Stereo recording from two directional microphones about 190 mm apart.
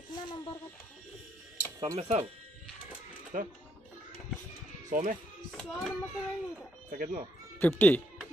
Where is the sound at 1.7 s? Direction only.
30° right (ahead or behind).